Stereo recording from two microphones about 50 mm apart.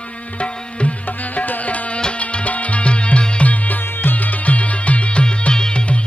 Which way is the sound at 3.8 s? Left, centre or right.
Left.